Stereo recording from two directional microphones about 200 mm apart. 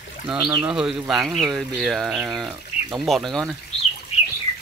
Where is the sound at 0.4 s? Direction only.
20° right (ahead or behind).